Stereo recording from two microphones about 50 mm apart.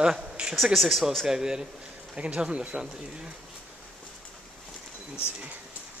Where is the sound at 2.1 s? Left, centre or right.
Right.